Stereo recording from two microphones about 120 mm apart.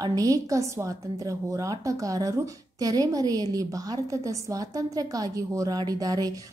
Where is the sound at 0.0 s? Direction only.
30° right (ahead or behind).